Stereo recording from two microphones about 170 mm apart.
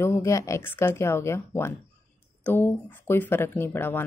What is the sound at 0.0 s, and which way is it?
Speech, 15° left (ahead or behind).